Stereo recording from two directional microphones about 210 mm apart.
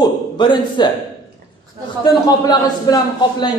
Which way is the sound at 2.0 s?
20° left (ahead or behind).